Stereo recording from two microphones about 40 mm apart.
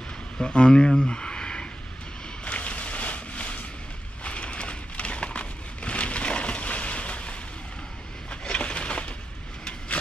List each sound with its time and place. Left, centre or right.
0.4 s speech: left
2.4 s boat: left
4.2 s a sound: left